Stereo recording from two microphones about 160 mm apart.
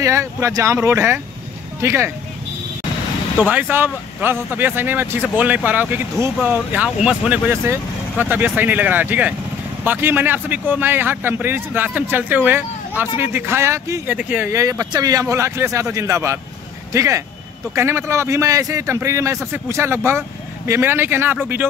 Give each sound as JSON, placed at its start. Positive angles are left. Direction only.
{"t": 0.0, "sound": "a man's voice", "side_deg": -20}
{"t": 3.3, "sound": "a man's voice", "side_deg": -10}